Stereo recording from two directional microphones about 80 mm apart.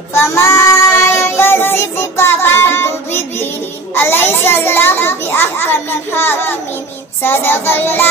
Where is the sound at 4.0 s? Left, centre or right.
Left.